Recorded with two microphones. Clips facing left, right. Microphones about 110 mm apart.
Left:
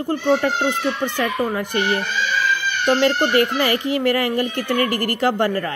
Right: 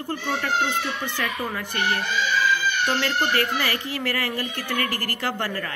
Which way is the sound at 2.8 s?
20° left (ahead or behind).